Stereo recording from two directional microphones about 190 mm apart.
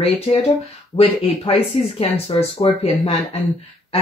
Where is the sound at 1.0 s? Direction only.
30° left (ahead or behind).